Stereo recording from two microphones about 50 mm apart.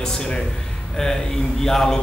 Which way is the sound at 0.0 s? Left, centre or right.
Centre.